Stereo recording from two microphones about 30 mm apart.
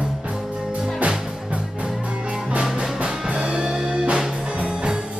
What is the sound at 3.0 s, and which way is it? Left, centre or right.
Music, right.